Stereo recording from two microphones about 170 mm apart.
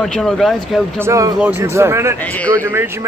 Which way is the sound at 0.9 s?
15° right (ahead or behind).